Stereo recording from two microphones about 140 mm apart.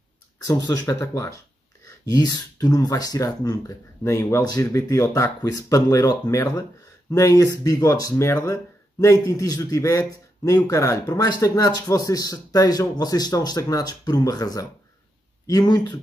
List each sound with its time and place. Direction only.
0.5 s a man's voice: 20° left (ahead or behind)